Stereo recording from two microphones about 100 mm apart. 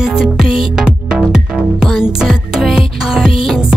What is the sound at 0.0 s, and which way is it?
Music, 5° right (ahead or behind).